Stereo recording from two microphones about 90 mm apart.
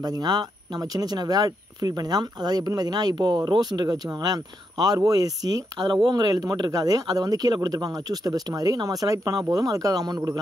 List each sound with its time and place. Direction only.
0.0 s speech: 50° right (ahead or behind)